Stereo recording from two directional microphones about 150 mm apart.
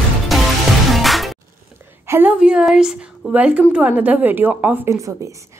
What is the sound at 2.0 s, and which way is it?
A woman's voice, 10° right (ahead or behind).